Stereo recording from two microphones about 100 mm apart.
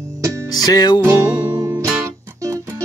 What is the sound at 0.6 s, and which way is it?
Music, 45° left (ahead or behind).